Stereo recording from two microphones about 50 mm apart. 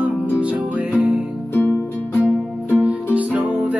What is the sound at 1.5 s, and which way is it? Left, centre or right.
Music, left.